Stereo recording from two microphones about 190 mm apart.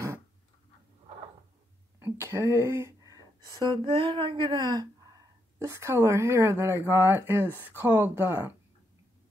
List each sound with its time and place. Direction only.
2.0 s speech: 15° right (ahead or behind)
3.8 s speech: 30° right (ahead or behind); by 8.5 s 10° right (ahead or behind)